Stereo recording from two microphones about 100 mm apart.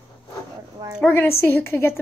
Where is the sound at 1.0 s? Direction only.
25° left (ahead or behind).